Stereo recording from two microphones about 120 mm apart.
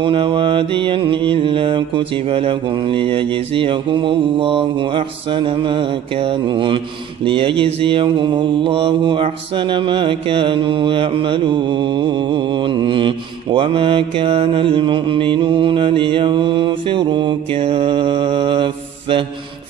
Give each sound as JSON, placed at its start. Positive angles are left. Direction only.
{"t": 0.0, "sound": "mantra", "side_deg": -45}